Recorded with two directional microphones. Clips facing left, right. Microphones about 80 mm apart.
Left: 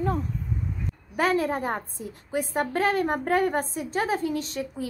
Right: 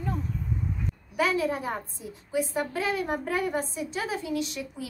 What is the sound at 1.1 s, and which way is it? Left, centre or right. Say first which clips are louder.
A woman's voice: left 2 dB; left.